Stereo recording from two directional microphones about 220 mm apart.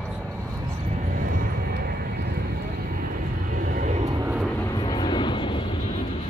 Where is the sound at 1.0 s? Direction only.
40° right (ahead or behind).